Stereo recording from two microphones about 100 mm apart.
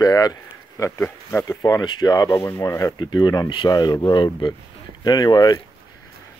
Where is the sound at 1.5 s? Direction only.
35° left (ahead or behind).